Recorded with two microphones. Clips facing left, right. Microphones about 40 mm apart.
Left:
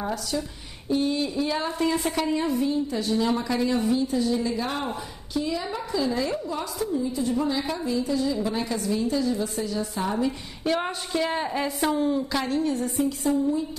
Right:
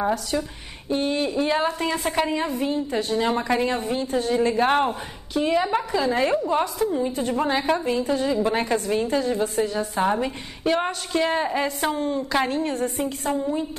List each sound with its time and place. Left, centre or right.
0.1 s a woman's voice: right
10.6 s a sound: centre
11.1 s a woman's voice: centre
12.3 s a woman's voice: right